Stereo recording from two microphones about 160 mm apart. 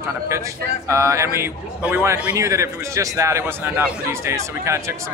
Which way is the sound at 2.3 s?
20° right (ahead or behind).